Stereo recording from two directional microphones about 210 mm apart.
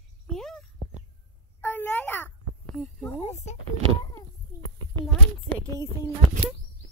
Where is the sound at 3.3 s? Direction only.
35° left (ahead or behind).